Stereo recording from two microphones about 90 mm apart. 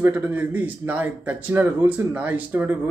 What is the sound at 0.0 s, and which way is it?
Speech, 20° right (ahead or behind).